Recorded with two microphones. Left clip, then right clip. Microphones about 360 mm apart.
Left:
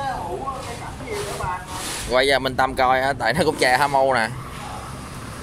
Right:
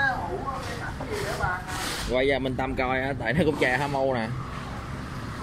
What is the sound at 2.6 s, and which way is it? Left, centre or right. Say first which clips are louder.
Speech: left 10 dB; centre.